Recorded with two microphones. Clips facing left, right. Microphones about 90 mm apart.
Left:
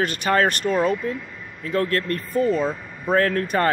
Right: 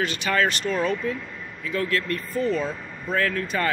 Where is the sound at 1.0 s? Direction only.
35° left (ahead or behind).